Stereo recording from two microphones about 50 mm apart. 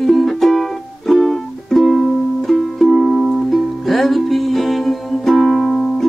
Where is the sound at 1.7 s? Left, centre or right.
Centre.